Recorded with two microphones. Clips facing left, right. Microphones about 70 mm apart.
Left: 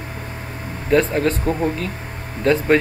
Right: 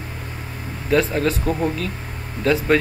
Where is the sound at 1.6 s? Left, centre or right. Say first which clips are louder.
Left 1 dB; left.